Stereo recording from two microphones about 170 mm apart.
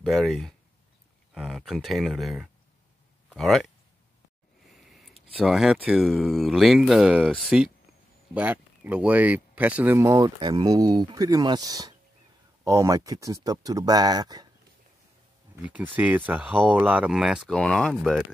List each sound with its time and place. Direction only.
0.0 s speech: centre (ahead or behind)
4.8 s a sound: centre (ahead or behind)
5.3 s speech: centre (ahead or behind); by 14.5 s 25° right (ahead or behind)
15.6 s speech: 10° right (ahead or behind)